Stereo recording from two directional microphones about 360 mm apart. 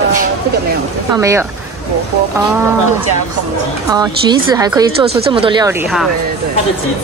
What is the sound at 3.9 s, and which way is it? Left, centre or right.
Speech, centre.